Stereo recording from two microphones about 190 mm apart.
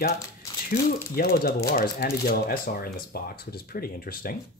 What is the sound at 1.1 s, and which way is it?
Speech, 50° left (ahead or behind).